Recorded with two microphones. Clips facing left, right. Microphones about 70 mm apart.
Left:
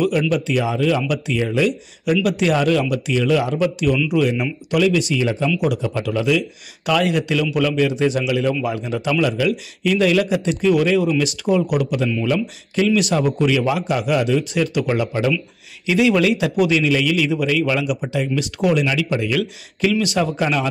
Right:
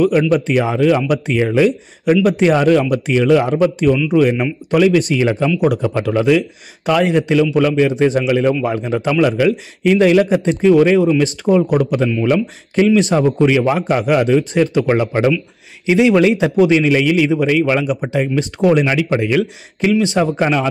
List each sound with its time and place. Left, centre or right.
0.3 s a man's voice: right
6.9 s a man's voice: right
15.8 s a man's voice: right